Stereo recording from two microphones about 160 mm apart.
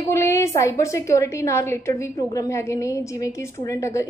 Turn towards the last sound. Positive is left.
turn(degrees=20)  # may be behind; listen again after turning